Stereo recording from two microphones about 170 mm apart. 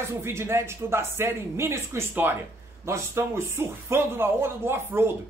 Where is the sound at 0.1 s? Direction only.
15° right (ahead or behind).